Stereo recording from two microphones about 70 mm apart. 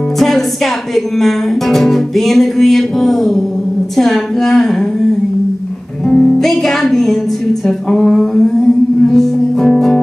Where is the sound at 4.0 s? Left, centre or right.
Centre.